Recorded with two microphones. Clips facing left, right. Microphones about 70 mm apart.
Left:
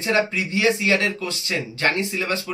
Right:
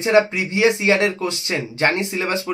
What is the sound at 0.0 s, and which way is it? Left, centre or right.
Speech, right.